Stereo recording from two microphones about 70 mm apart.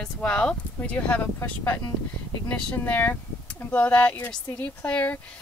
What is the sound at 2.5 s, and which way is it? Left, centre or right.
A woman's voice, left.